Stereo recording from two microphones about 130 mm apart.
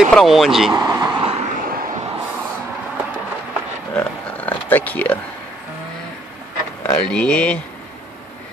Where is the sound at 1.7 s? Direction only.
90° right.